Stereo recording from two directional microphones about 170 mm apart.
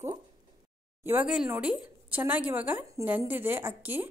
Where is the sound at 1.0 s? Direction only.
10° right (ahead or behind).